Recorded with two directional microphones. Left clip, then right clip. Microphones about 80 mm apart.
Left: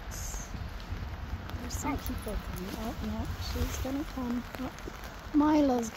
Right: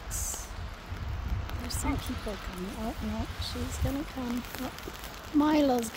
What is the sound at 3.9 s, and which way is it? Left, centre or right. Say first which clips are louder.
Speech: right 2 dB; right.